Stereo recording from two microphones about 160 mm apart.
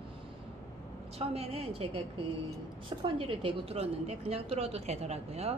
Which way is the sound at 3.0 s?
35° right (ahead or behind).